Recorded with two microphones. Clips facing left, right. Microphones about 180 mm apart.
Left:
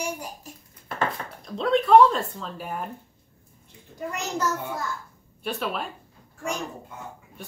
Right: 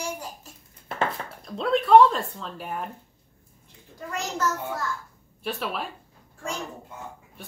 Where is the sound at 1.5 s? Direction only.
Centre (ahead or behind).